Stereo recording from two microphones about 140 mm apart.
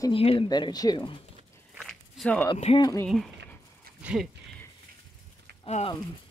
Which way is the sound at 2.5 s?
45° left (ahead or behind).